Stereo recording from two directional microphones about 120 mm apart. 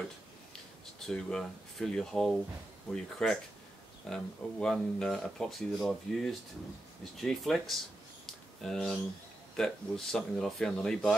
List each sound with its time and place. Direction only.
0.9 s speech: 5° left (ahead or behind)
8.3 s a sound: 5° left (ahead or behind)
9.6 s speech: 5° left (ahead or behind)